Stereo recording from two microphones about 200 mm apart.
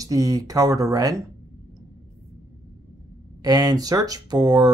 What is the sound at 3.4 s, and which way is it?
Speech, 20° right (ahead or behind).